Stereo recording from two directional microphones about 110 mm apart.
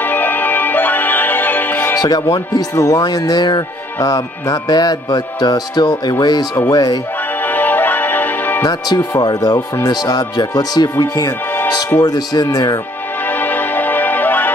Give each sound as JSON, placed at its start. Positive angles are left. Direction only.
{"t": 0.0, "sound": "music", "side_deg": 15}
{"t": 2.0, "sound": "speech", "side_deg": 35}
{"t": 7.4, "sound": "music", "side_deg": 15}
{"t": 8.6, "sound": "speech", "side_deg": 40}
{"t": 11.5, "sound": "music", "side_deg": 20}
{"t": 12.0, "sound": "speech", "side_deg": 35}
{"t": 13.3, "sound": "music", "side_deg": 15}